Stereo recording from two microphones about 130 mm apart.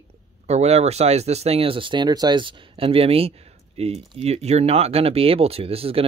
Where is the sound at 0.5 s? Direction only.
55° right (ahead or behind).